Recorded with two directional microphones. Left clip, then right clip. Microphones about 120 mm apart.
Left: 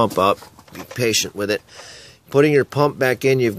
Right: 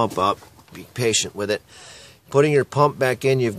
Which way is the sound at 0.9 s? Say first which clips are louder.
Left 2 dB; 5° left (ahead or behind).